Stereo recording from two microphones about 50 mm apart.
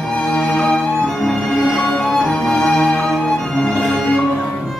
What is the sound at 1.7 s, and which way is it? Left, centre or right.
Violin, centre.